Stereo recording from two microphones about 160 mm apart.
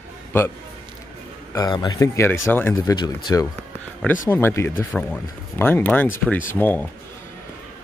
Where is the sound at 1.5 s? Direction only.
25° left (ahead or behind).